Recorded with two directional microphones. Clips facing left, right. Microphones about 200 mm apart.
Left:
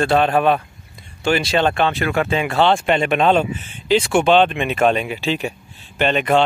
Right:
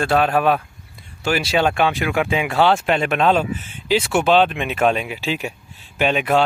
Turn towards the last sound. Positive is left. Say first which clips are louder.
# left 1 dB
turn(degrees=-5)  # may be behind; listen again after turning